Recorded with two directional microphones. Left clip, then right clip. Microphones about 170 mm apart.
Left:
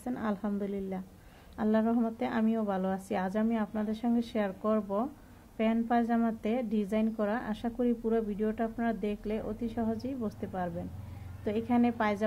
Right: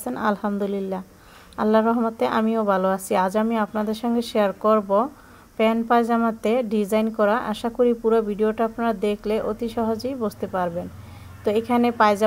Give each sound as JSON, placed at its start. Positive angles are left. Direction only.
{"t": 0.0, "sound": "a woman's voice", "side_deg": -20}